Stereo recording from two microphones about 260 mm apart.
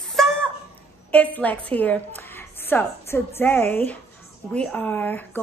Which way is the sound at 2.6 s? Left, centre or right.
Centre.